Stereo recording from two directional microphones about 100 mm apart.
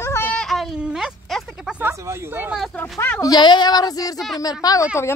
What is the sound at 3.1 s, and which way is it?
A woman's voice, 40° left (ahead or behind).